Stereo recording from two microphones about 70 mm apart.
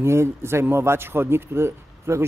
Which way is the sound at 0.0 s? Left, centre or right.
Right.